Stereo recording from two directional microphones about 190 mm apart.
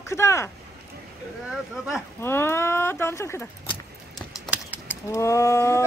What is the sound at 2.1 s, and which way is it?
Speech, 10° left (ahead or behind).